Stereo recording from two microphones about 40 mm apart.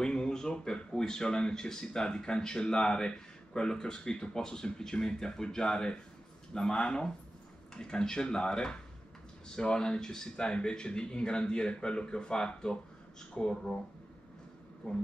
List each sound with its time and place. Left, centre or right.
0.0 s a sound: centre
0.7 s speech: centre
14.8 s speech: left